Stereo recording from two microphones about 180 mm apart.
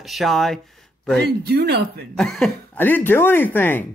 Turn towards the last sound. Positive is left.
turn(degrees=10)  # may be behind; listen again after turning